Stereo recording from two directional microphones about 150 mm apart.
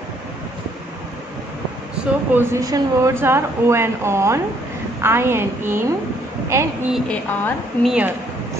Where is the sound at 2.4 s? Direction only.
20° right (ahead or behind).